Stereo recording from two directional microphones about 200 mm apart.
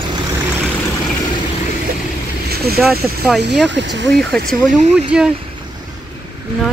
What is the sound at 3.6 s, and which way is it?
Speech, 60° right (ahead or behind).